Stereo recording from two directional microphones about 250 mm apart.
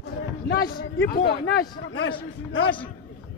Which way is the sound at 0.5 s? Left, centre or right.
Left.